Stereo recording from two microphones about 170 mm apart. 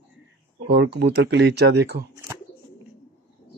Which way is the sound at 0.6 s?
85° right.